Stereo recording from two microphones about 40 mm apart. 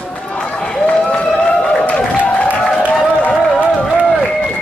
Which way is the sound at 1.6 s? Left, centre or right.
Left.